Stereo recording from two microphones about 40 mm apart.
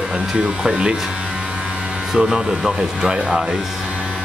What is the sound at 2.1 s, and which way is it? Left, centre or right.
Speech, centre.